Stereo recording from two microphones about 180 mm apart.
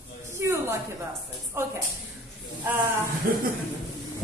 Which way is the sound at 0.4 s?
15° right (ahead or behind).